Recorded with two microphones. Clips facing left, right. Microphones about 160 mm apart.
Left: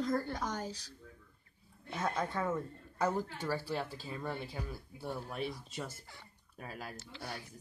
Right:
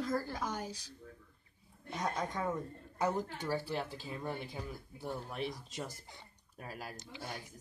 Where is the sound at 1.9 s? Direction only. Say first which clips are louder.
Left 1 dB; 15° right (ahead or behind).